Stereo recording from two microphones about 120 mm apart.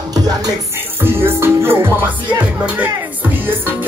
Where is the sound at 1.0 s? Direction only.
20° right (ahead or behind).